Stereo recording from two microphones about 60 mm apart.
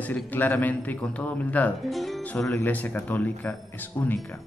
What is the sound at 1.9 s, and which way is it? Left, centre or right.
Speech, centre.